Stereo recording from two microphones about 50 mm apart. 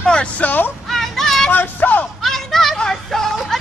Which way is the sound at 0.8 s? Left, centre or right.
Centre.